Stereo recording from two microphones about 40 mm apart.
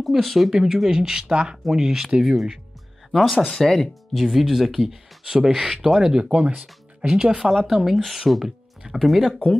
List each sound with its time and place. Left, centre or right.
0.0 s speech: centre; by 1.6 s right
1.7 s speech: centre
3.3 s speech: centre
4.2 s speech: centre
6.2 s speech: right
7.1 s speech: centre